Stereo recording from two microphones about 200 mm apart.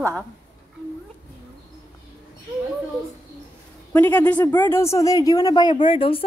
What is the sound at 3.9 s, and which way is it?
Speech, 10° left (ahead or behind).